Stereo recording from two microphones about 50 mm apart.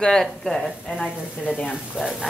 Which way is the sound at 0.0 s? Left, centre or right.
Centre.